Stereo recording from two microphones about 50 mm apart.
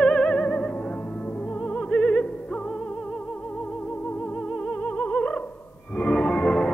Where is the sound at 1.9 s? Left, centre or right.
Left.